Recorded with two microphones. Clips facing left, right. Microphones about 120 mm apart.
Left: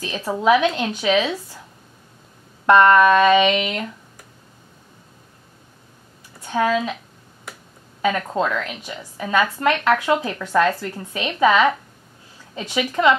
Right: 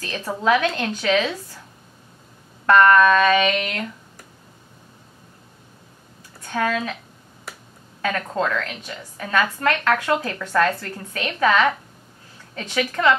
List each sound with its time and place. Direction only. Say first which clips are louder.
0.0 s a woman's voice: left 3 dB; 15° left (ahead or behind)
2.6 s a sound: left 1 dB; 20° left (ahead or behind)
6.4 s speech: left 3 dB; 15° left (ahead or behind)
8.0 s a woman's voice: left 3 dB; 15° left (ahead or behind)